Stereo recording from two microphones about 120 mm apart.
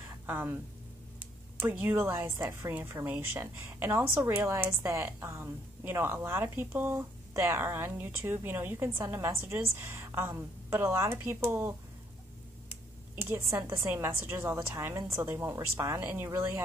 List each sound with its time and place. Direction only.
0.3 s a woman's voice: 15° right (ahead or behind)
13.1 s a woman's voice: 15° right (ahead or behind)
16.0 s a woman's voice: 10° right (ahead or behind)